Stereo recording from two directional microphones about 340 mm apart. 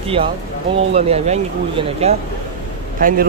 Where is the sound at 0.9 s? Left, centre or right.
Centre.